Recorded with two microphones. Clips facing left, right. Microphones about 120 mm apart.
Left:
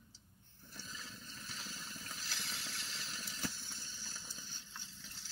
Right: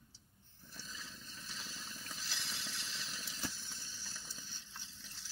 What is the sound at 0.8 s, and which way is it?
Vehicle, 45° left (ahead or behind).